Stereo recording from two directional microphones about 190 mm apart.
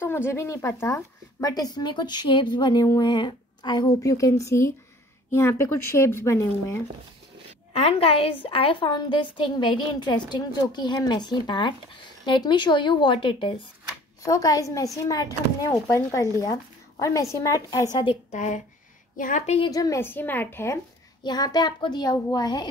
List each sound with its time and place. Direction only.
0.0 s a woman's voice: 10° left (ahead or behind)
7.7 s a woman's voice: 30° left (ahead or behind)
18.3 s a woman's voice: 40° left (ahead or behind)
19.7 s a woman's voice: 20° left (ahead or behind)